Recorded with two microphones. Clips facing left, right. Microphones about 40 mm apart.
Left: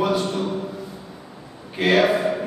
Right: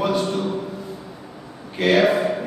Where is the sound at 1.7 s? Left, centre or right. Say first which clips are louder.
Right 1 dB; centre.